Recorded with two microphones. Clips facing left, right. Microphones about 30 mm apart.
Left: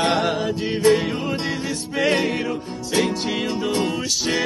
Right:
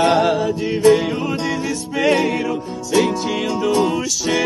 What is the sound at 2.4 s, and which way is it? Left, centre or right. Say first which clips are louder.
Music: right 3 dB; left.